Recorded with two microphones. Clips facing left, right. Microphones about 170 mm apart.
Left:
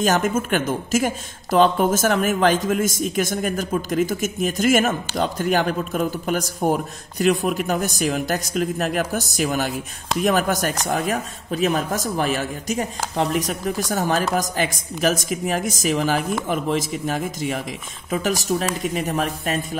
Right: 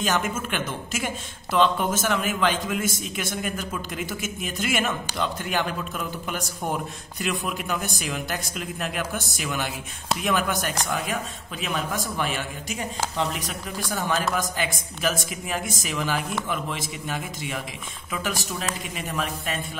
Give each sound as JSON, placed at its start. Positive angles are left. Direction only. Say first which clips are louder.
{"t": 0.0, "sound": "speech", "louder": "left 6 dB", "side_deg": 45}